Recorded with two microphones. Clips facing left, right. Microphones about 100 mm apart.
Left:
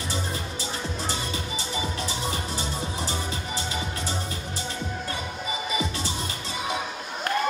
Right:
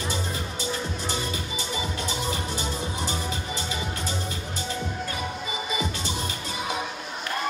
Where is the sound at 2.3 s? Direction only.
30° left (ahead or behind).